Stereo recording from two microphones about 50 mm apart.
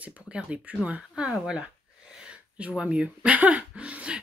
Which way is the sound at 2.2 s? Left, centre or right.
Right.